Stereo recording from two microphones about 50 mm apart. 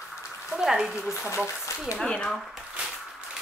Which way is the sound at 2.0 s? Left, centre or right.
Centre.